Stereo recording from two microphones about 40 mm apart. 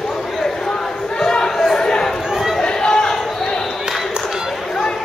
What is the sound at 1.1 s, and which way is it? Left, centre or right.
Chatter, centre.